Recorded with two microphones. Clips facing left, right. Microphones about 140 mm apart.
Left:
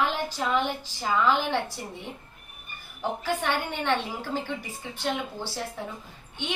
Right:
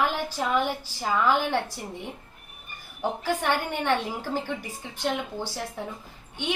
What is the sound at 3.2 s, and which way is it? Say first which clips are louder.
A woman's voice: right 2 dB; 10° right (ahead or behind).